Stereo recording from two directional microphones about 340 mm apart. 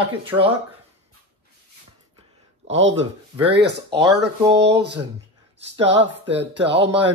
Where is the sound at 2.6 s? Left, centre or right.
Right.